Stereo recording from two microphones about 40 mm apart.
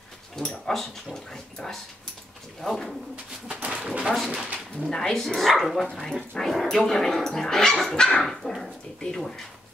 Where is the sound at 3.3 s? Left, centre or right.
Centre.